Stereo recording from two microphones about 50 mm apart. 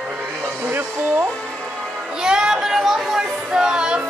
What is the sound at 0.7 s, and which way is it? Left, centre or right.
Speech, right.